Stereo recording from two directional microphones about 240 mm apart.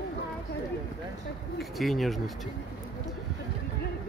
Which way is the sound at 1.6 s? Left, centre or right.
Centre.